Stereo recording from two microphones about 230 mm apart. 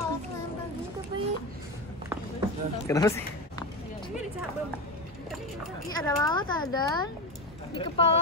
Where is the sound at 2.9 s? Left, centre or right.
Centre.